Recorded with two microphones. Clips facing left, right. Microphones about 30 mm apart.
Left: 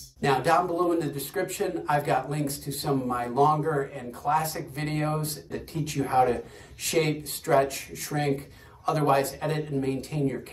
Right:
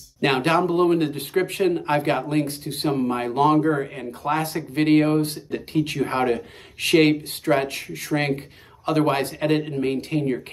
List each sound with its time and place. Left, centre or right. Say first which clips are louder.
0.2 s speech: right 3 dB; right